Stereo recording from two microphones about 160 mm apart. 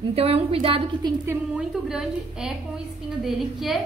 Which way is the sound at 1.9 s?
5° right (ahead or behind).